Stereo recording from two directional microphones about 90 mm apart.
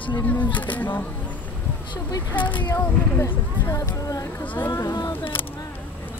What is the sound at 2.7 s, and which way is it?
Speech, 35° left (ahead or behind).